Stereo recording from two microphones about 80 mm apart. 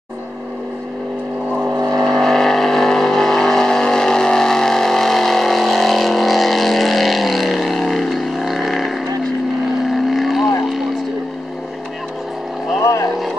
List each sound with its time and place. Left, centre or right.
2.0 s vehicle: centre
9.8 s boat: centre
12.8 s motorboat: left